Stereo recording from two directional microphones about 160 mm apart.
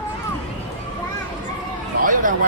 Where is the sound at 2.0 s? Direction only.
60° right (ahead or behind).